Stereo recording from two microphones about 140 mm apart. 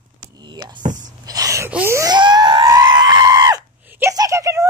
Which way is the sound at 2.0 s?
30° right (ahead or behind).